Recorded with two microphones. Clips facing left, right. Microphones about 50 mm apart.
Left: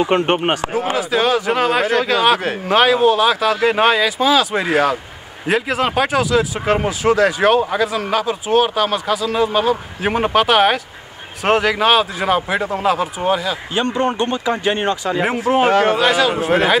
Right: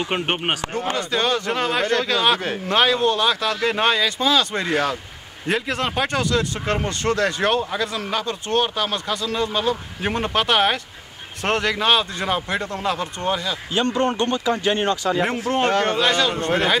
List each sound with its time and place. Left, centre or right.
0.3 s speech: centre
13.7 s speech: left
15.5 s speech: centre